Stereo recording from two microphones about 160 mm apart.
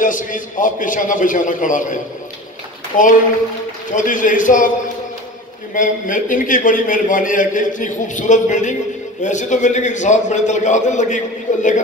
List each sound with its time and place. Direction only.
0.0 s a man's voice: 55° left (ahead or behind)
5.8 s a man's voice: 55° left (ahead or behind)